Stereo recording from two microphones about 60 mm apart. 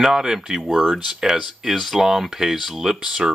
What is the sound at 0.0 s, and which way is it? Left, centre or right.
Speech, centre.